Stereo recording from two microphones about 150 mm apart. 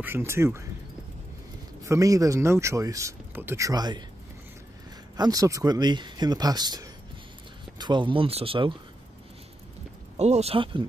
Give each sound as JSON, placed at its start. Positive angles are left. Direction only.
{"t": 0.0, "sound": "speech", "side_deg": -15}
{"t": 1.8, "sound": "speech", "side_deg": -20}
{"t": 5.1, "sound": "speech", "side_deg": -25}
{"t": 10.1, "sound": "speech", "side_deg": -45}